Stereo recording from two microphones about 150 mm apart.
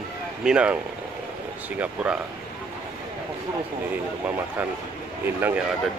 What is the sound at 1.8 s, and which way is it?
Speech, 10° right (ahead or behind).